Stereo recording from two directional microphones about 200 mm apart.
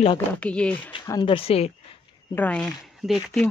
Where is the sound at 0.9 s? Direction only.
20° left (ahead or behind).